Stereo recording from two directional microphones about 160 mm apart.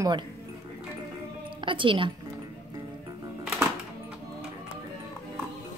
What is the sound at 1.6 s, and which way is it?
Speech, 30° right (ahead or behind).